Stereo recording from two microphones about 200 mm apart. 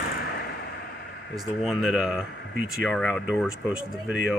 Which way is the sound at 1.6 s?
Centre (ahead or behind).